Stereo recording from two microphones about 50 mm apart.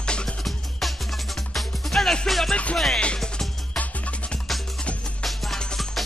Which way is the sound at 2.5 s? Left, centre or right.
Left.